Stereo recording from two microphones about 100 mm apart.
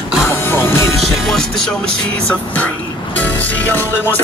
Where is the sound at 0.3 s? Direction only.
25° left (ahead or behind).